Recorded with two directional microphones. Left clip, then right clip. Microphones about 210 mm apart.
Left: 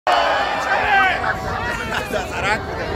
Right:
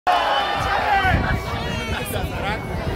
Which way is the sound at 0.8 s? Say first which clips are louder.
Left 4 dB; 35° right (ahead or behind).